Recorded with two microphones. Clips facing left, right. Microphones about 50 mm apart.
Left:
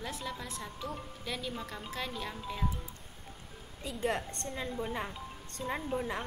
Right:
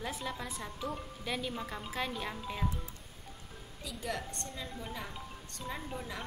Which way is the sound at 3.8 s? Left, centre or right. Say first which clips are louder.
Left 5 dB; left.